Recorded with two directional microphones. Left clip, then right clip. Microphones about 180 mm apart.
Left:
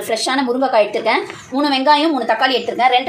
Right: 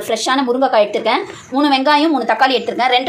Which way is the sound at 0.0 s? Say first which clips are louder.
Right 2 dB; centre (ahead or behind).